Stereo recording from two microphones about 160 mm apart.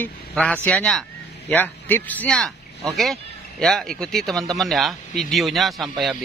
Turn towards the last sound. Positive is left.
turn(degrees=0)  # may be behind; listen again after turning